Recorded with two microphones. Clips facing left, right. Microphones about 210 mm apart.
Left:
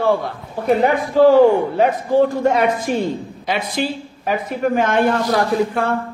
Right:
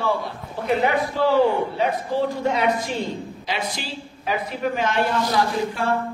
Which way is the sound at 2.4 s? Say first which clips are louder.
Left 5 dB; 50° left (ahead or behind).